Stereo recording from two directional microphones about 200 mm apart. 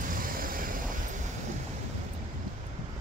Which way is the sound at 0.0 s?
45° right (ahead or behind).